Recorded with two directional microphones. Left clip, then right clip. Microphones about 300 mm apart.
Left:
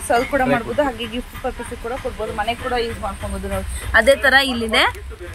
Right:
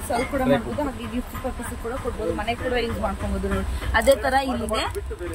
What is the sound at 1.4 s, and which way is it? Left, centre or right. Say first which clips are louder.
Speech: left 7 dB; centre.